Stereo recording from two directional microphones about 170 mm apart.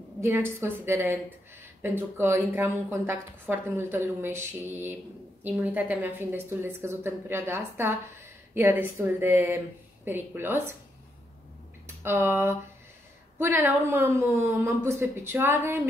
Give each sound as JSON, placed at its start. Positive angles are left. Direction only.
{"t": 0.2, "sound": "a woman's voice", "side_deg": -15}
{"t": 12.0, "sound": "a woman's voice", "side_deg": -15}